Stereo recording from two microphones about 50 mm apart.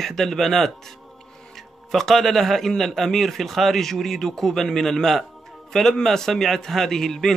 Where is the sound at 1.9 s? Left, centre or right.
Centre.